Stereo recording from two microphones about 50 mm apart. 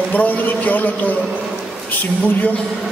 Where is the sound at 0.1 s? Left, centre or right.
Left.